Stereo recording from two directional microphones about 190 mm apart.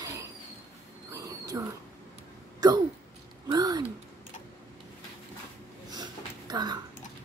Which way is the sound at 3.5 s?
20° right (ahead or behind).